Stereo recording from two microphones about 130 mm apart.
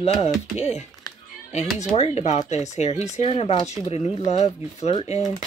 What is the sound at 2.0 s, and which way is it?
Speech, 55° left (ahead or behind).